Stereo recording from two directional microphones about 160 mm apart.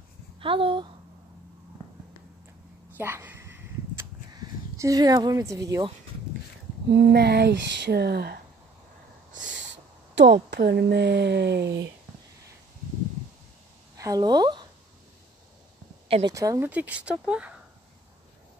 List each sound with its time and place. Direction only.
0.4 s speech: 35° right (ahead or behind)
3.0 s a sound: 15° right (ahead or behind)
6.9 s speech: 90° right
9.4 s a sound: 90° right
10.5 s speech: 90° right
13.9 s speech: 20° right (ahead or behind)
16.1 s speech: 25° right (ahead or behind); by 17.6 s 5° right (ahead or behind)